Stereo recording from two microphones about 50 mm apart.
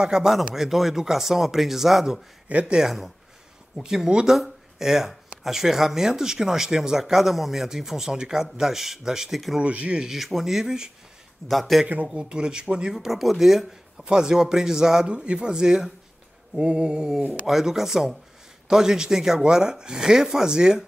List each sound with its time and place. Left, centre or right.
0.0 s speech: centre
2.5 s speech: right
3.7 s speech: centre
9.6 s speech: right
10.0 s speech: centre
11.4 s speech: centre
12.1 s speech: centre
12.9 s speech: centre
17.3 s speech: centre